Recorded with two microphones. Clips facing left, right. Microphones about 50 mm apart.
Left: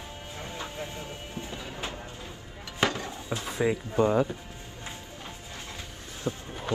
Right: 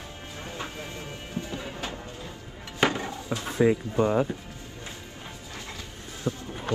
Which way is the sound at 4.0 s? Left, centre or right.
Centre.